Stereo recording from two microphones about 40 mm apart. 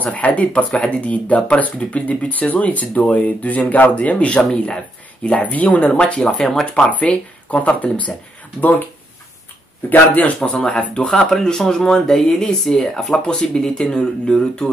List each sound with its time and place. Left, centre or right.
0.0 s speech: left
5.9 s speech: left
6.9 s speech: left
8.5 s speech: left
9.8 s speech: left
11.1 s speech: centre